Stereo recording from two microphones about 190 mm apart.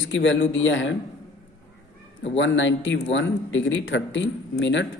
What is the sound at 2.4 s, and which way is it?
Speech, 75° left (ahead or behind).